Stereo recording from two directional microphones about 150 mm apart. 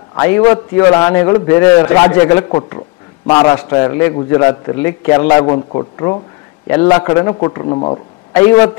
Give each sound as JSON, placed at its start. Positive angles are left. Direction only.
{"t": 0.1, "sound": "a man's voice", "side_deg": 20}
{"t": 5.5, "sound": "a man's voice", "side_deg": 35}
{"t": 8.3, "sound": "speech", "side_deg": 15}